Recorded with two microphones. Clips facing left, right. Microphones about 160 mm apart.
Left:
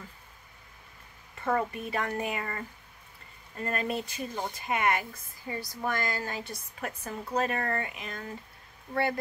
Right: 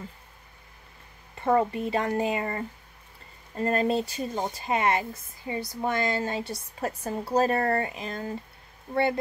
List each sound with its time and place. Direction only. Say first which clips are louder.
1.4 s speech: right 6 dB; 25° right (ahead or behind)